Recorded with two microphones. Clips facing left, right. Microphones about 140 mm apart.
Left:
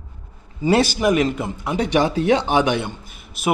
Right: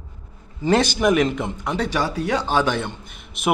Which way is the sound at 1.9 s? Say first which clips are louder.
Left 9 dB; 20° left (ahead or behind).